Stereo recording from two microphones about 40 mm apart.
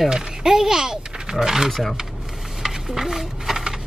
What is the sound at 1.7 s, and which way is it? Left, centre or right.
Speech, centre.